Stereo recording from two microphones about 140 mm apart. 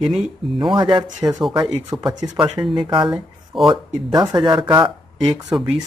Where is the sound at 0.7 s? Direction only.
35° right (ahead or behind).